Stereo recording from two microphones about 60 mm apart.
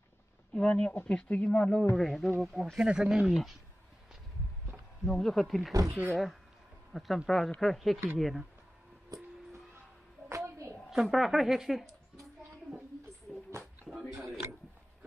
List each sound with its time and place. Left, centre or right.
0.5 s speech: centre
2.0 s speech: centre
2.8 s speech: centre
5.0 s speech: centre
5.7 s speech: right
6.9 s speech: centre
10.3 s a sound: right
10.9 s speech: centre
13.3 s a sound: centre